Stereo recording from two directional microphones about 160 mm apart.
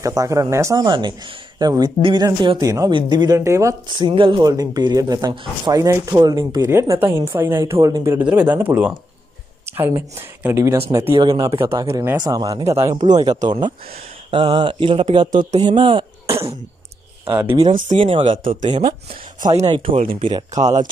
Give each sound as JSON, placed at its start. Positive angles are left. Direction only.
{"t": 0.0, "sound": "speech", "side_deg": -20}
{"t": 3.9, "sound": "speech", "side_deg": -30}
{"t": 8.3, "sound": "speech", "side_deg": -10}
{"t": 17.3, "sound": "speech", "side_deg": -15}
{"t": 17.9, "sound": "speech", "side_deg": -30}
{"t": 20.5, "sound": "speech", "side_deg": -45}